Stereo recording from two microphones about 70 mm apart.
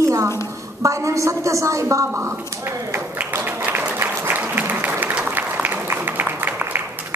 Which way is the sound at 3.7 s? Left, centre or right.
Right.